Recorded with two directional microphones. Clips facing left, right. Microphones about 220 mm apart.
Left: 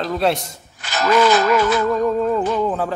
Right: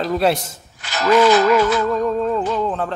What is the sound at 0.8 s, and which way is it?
Speech, 50° left (ahead or behind).